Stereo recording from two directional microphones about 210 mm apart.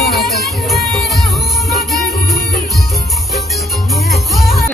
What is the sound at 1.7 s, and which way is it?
Music, centre (ahead or behind).